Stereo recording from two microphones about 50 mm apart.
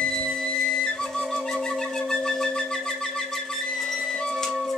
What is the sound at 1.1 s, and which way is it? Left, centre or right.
Wind instrument, centre.